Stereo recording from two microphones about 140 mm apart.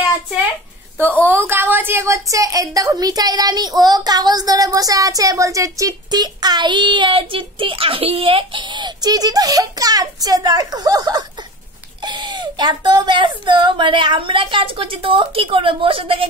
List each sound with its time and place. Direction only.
1.2 s a woman's voice: 15° right (ahead or behind); by 16.3 s 40° right (ahead or behind)